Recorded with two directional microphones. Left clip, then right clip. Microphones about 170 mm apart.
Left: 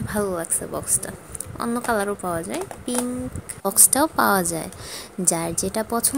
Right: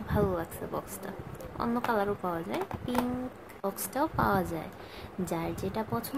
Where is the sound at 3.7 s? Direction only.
50° left (ahead or behind).